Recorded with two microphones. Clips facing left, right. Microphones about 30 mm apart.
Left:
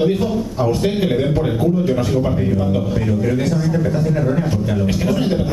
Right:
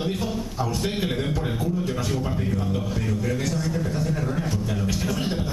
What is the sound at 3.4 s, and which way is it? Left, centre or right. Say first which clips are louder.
A man's voice: left 8 dB; centre.